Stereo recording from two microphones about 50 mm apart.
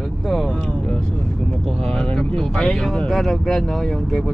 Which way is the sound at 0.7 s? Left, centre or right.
Left.